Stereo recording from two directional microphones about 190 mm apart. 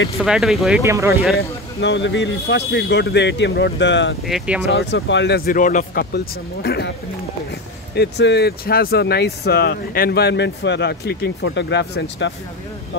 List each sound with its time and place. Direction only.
0.2 s speech: centre (ahead or behind)
0.8 s speech: 15° right (ahead or behind)
1.3 s a man's voice: 60° left (ahead or behind)
4.3 s speech: 5° right (ahead or behind)
4.6 s speech: 75° left (ahead or behind); by 6.0 s 45° left (ahead or behind)
6.1 s speech: 60° left (ahead or behind)
7.9 s speech: 60° left (ahead or behind)